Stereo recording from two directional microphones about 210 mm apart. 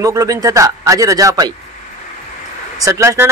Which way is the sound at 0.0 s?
15° right (ahead or behind).